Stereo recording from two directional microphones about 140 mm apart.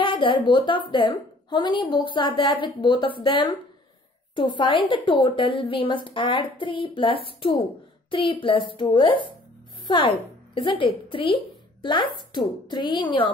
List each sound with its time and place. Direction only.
0.0 s a woman's voice: 35° left (ahead or behind)